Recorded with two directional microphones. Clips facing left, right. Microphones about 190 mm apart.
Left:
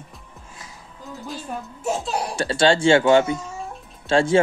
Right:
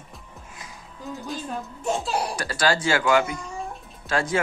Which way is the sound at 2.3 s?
25° left (ahead or behind).